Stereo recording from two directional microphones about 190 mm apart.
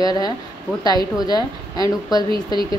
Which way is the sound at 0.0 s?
20° left (ahead or behind).